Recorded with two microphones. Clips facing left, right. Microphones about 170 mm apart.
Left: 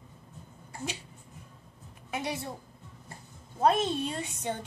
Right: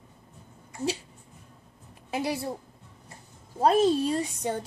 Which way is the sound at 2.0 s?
30° right (ahead or behind).